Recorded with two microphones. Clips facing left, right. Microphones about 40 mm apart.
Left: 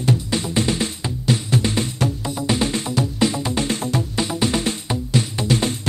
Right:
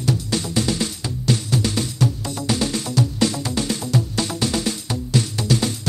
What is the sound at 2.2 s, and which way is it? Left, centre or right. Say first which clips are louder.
Music: left 2 dB; centre.